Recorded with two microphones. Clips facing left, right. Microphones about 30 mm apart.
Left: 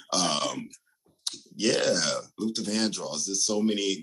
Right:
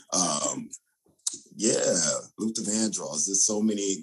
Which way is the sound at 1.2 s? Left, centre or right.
Left.